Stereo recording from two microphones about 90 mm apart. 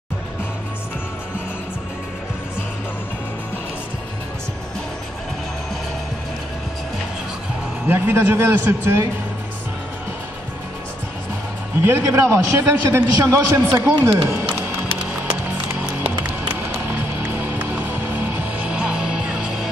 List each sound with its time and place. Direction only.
7.8 s a man's voice: 25° right (ahead or behind)
11.8 s a man's voice: 30° right (ahead or behind)
16.5 s music: 25° right (ahead or behind)